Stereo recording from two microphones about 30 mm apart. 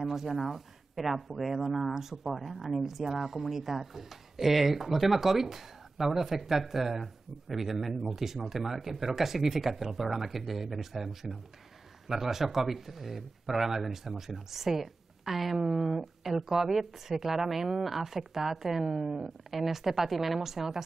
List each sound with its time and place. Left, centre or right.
0.0 s a woman's voice: centre
15.5 s speech: centre
17.8 s speech: centre